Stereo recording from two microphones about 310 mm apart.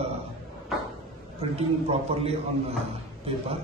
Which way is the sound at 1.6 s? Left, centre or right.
Centre.